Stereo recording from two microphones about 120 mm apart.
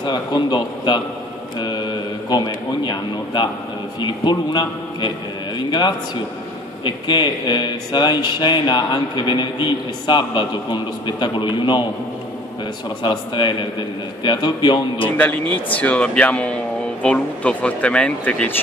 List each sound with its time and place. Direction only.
0.0 s speech: 35° left (ahead or behind)
13.0 s speech: 40° left (ahead or behind)
15.1 s speech: 15° left (ahead or behind)